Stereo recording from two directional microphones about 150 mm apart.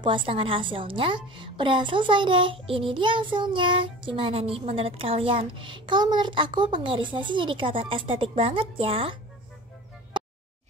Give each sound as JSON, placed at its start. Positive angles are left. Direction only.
{"t": 0.0, "sound": "a woman's voice", "side_deg": -35}